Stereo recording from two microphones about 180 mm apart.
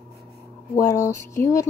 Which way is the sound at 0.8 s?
15° left (ahead or behind).